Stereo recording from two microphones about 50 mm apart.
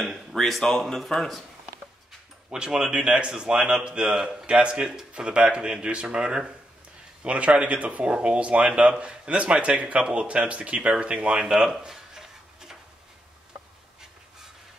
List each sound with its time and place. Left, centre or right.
0.0 s speech: centre
2.5 s a man's voice: centre
11.8 s a sound: centre